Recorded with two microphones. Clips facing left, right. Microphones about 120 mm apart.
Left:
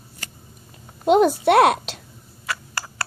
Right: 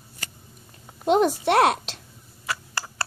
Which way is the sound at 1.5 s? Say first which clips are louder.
Left 4 dB; 30° right (ahead or behind).